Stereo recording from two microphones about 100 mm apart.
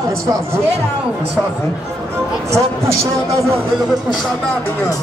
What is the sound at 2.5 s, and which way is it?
A man's voice, 30° right (ahead or behind).